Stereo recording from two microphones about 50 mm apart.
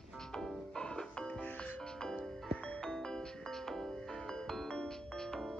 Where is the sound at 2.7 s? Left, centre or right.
Centre.